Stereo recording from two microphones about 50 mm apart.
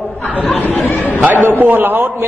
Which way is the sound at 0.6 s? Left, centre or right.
Left.